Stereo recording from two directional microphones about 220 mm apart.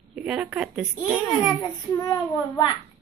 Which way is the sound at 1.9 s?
15° left (ahead or behind).